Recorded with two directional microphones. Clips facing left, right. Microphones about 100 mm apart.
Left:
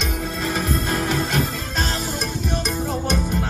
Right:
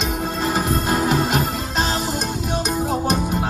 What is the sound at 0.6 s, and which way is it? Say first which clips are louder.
Music: right 3 dB; 35° right (ahead or behind).